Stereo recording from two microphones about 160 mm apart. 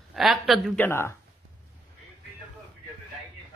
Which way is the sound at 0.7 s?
10° left (ahead or behind).